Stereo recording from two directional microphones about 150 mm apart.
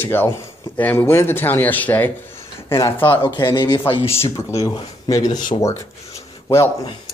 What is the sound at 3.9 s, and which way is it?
Speech, 40° left (ahead or behind).